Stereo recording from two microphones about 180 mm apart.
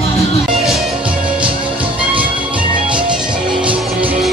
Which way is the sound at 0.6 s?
Centre (ahead or behind).